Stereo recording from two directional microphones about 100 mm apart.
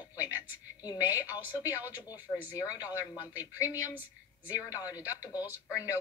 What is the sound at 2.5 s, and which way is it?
Speech, 35° left (ahead or behind).